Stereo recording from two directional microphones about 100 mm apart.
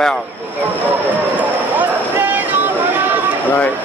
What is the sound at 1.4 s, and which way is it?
Vehicle, 15° right (ahead or behind).